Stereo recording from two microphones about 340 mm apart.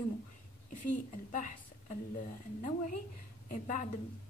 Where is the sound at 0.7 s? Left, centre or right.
Left.